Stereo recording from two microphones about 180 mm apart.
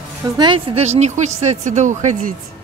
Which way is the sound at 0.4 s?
30° right (ahead or behind).